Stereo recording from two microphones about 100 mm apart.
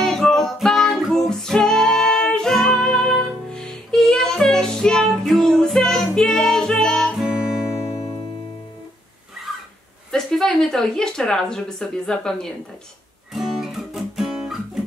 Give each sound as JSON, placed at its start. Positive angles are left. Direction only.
{"t": 0.0, "sound": "music", "side_deg": 5}
{"t": 10.1, "sound": "speech", "side_deg": 5}
{"t": 13.3, "sound": "guitar", "side_deg": -5}